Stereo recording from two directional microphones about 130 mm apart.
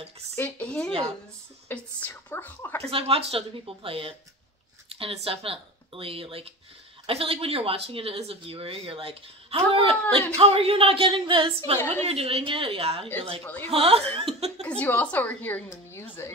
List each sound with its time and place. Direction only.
0.4 s a woman's voice: 10° left (ahead or behind)
2.8 s speech: 45° right (ahead or behind)
14.7 s a woman's voice: 10° left (ahead or behind)